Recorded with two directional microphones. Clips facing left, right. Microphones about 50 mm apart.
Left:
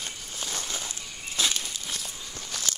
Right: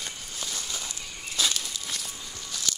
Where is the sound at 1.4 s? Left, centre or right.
Centre.